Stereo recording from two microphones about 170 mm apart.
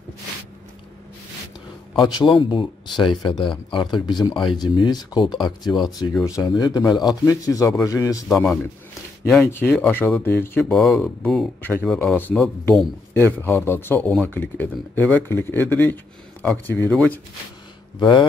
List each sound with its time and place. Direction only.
2.0 s speech: 25° left (ahead or behind)
8.3 s speech: 5° left (ahead or behind)
10.6 s speech: centre (ahead or behind)
13.4 s speech: 15° left (ahead or behind)
17.9 s speech: 25° left (ahead or behind)